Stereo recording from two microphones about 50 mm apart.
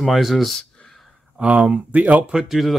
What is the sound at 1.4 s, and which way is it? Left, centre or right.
Speech, right.